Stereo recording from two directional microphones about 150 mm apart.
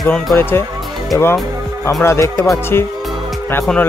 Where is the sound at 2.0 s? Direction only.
15° left (ahead or behind).